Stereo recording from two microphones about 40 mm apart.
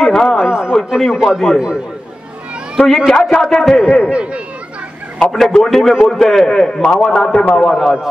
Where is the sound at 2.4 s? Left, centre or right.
Right.